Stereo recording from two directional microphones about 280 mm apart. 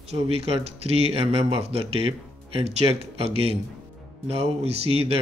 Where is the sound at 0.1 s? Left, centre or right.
Right.